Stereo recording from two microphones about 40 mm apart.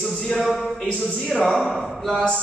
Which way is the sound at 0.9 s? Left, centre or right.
Left.